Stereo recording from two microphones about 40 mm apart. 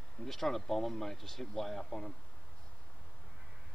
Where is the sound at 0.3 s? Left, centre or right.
Centre.